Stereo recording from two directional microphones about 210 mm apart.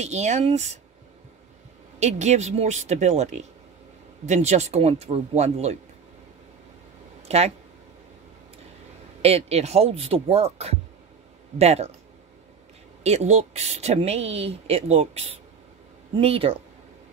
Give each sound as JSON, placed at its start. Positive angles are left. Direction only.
{"t": 0.0, "sound": "speech", "side_deg": -35}
{"t": 2.0, "sound": "speech", "side_deg": -35}
{"t": 7.2, "sound": "speech", "side_deg": -30}
{"t": 9.2, "sound": "speech", "side_deg": -30}
{"t": 13.0, "sound": "speech", "side_deg": -30}